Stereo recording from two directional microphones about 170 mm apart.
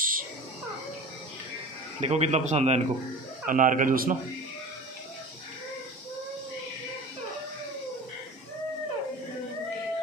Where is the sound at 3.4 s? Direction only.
50° right (ahead or behind).